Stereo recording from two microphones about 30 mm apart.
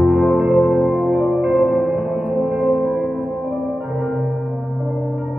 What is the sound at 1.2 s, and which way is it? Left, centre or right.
Music, right.